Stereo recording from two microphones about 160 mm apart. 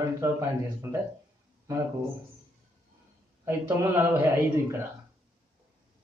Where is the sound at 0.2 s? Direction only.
20° right (ahead or behind).